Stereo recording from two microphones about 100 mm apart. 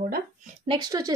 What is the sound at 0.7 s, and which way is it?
Speech, 35° right (ahead or behind).